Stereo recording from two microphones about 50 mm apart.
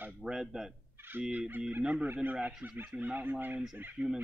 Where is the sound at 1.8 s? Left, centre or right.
Right.